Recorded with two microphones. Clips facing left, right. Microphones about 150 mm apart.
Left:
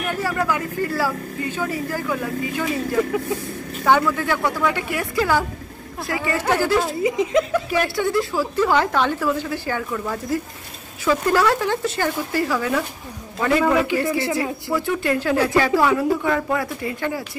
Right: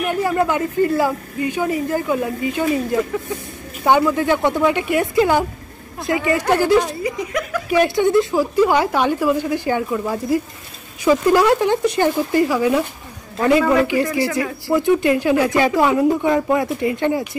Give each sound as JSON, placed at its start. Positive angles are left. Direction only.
{"t": 0.1, "sound": "a woman's voice", "side_deg": -20}
{"t": 7.0, "sound": "speech", "side_deg": 20}
{"t": 7.7, "sound": "a woman's voice", "side_deg": -20}
{"t": 14.0, "sound": "speech", "side_deg": 20}
{"t": 14.7, "sound": "a woman's voice", "side_deg": -20}